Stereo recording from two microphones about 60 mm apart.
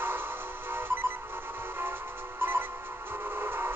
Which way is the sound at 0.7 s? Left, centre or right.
Right.